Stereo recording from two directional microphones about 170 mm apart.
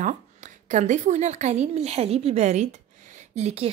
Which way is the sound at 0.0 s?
45° right (ahead or behind).